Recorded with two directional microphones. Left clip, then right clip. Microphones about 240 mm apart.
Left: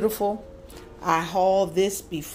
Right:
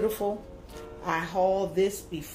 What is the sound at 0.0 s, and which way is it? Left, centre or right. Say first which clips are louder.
Speech: left 4 dB; left.